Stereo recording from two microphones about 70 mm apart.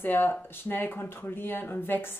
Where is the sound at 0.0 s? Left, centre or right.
Left.